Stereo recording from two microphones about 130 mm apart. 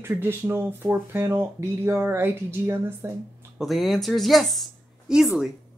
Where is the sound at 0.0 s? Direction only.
15° right (ahead or behind).